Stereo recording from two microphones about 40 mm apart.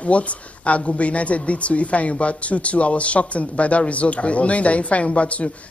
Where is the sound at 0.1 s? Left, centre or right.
Left.